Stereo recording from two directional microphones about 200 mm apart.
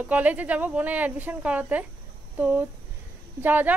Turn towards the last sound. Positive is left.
turn(degrees=-10)  # may be behind; listen again after turning